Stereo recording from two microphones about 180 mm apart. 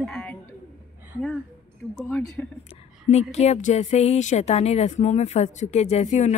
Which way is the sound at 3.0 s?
40° left (ahead or behind).